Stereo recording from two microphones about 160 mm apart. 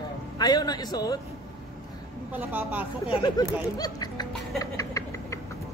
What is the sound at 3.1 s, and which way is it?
Speech, 25° left (ahead or behind).